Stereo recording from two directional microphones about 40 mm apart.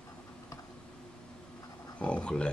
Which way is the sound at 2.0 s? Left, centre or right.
Left.